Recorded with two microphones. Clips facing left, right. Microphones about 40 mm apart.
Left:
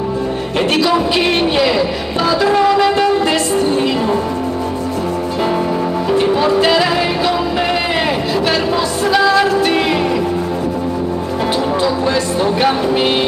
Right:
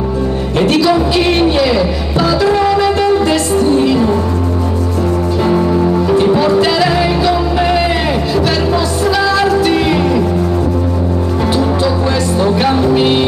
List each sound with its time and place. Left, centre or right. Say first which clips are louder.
0.6 s music: right 3 dB; centre
5.4 s music: right 4 dB; centre
11.5 s music: right 1 dB; centre